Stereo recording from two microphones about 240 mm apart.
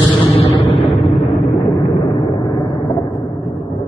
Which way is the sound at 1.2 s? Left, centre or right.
Left.